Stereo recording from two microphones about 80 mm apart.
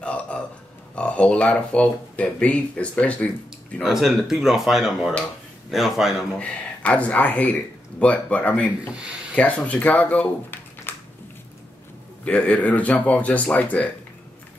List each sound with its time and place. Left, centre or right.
0.0 s burping: centre
0.9 s speech: centre
3.8 s speech: centre
6.3 s speech: centre
12.3 s speech: centre